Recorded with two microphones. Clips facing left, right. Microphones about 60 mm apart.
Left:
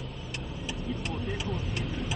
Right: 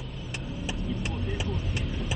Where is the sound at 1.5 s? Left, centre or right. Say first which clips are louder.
Even; centre.